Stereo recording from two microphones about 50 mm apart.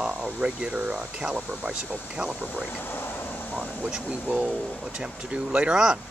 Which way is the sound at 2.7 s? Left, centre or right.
Left.